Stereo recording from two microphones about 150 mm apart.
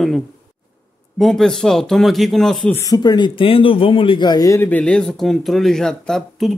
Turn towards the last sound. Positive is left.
turn(degrees=5)  # may be behind; listen again after turning